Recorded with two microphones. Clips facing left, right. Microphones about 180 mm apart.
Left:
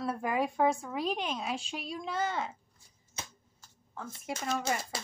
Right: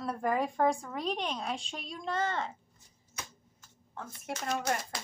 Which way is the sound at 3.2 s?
25° left (ahead or behind).